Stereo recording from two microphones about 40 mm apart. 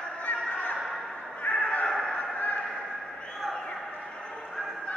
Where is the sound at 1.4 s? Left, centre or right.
Left.